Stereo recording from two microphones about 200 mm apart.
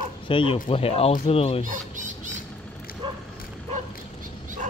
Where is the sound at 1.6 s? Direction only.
40° right (ahead or behind).